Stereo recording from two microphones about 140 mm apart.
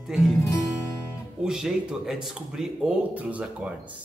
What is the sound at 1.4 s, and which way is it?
Speech, 5° right (ahead or behind).